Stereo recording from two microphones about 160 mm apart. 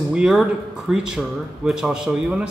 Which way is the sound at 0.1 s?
5° right (ahead or behind).